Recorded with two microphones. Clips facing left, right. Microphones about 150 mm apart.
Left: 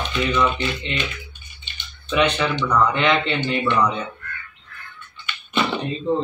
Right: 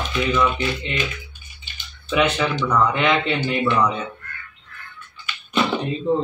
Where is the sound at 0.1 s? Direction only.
5° right (ahead or behind).